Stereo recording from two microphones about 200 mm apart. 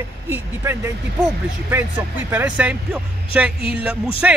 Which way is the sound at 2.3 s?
10° right (ahead or behind).